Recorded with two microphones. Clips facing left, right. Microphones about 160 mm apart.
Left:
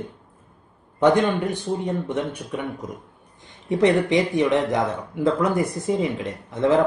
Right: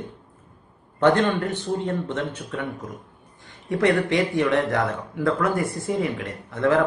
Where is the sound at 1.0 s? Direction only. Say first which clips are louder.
Left 1 dB; 10° left (ahead or behind).